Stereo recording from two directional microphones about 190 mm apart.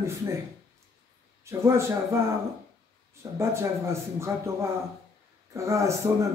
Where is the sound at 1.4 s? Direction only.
15° right (ahead or behind).